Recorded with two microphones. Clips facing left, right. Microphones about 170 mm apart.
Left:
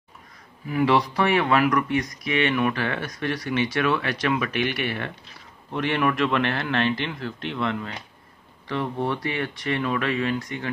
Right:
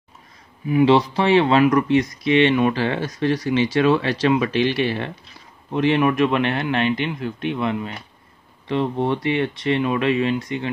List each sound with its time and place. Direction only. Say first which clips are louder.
0.7 s speech: right 6 dB; 20° right (ahead or behind)